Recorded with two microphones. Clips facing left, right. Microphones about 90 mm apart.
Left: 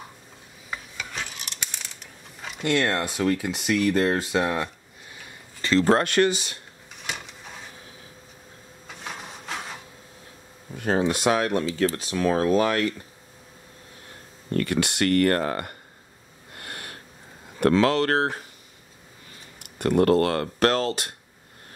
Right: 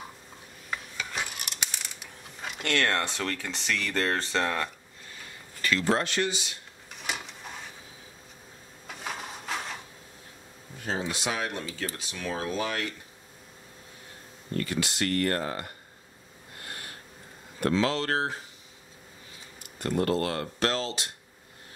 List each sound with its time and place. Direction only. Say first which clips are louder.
0.7 s a sound: even; centre (ahead or behind)
5.6 s a sound: left 7 dB; 30° left (ahead or behind)
5.9 s speech: left 7 dB; 55° left (ahead or behind)
7.0 s a sound: even; centre (ahead or behind)
8.8 s printer: right 1 dB; centre (ahead or behind)
10.8 s speech: left 9 dB; 60° left (ahead or behind)
12.1 s speech: left 11 dB; 50° left (ahead or behind)
14.5 s speech: left 6 dB; 65° left (ahead or behind)
16.5 s snort: left 3 dB; 65° left (ahead or behind)
17.6 s speech: left 7 dB; 65° left (ahead or behind)
19.6 s speech: left 8 dB; 65° left (ahead or behind)